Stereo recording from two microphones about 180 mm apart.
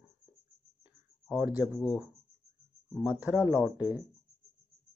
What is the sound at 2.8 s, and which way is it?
Speech, 5° right (ahead or behind).